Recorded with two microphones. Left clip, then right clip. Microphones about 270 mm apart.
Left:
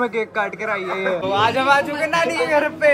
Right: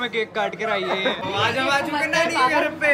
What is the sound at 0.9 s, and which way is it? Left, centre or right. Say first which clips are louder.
Speech: left 2 dB; right.